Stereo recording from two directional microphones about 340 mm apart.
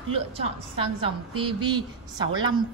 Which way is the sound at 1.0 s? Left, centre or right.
Centre.